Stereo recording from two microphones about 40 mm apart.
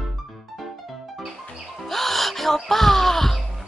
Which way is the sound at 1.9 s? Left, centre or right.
Centre.